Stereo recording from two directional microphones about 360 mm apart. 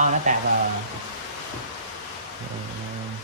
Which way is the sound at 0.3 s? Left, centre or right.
Centre.